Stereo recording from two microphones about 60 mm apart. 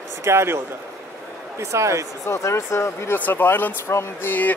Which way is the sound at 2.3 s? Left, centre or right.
Left.